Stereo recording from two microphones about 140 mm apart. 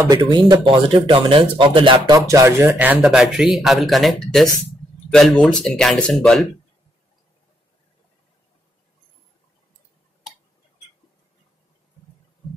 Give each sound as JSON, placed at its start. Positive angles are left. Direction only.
{"t": 0.1, "sound": "speech", "side_deg": -30}
{"t": 2.1, "sound": "speech", "side_deg": -25}